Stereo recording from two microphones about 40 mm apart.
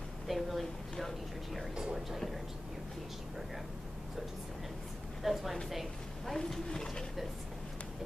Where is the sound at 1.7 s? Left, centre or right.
Centre.